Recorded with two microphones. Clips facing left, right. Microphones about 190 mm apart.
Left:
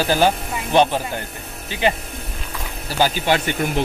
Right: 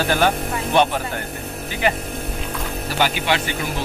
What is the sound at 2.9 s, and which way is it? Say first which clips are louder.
Speech: left 3 dB; 35° left (ahead or behind).